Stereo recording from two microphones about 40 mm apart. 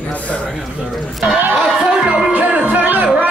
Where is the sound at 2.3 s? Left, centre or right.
Right.